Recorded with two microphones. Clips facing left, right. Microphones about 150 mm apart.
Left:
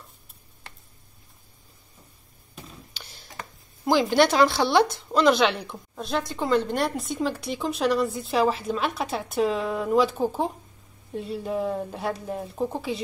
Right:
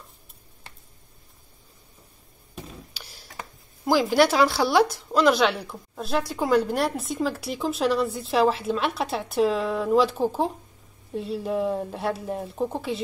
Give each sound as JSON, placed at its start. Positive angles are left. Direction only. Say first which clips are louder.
{"t": 2.9, "sound": "speech", "louder": "even", "side_deg": -5}